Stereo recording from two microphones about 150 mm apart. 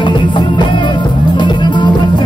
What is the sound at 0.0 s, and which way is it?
Music, 30° left (ahead or behind).